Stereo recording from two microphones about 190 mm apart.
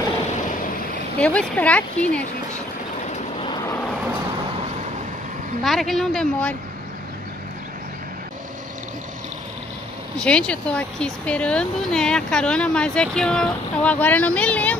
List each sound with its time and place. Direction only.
1.2 s speech: 5° left (ahead or behind)
3.1 s vehicle: 30° left (ahead or behind)
5.6 s speech: centre (ahead or behind)
10.2 s speech: 5° left (ahead or behind)